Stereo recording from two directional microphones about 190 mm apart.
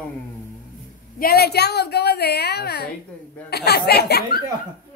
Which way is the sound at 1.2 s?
55° left (ahead or behind).